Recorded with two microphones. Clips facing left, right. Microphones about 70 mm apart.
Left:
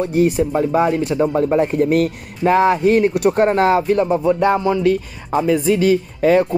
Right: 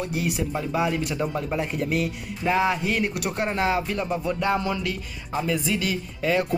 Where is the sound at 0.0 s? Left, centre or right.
Left.